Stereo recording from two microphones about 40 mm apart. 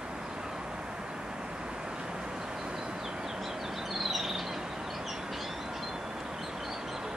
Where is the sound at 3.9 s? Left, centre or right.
Centre.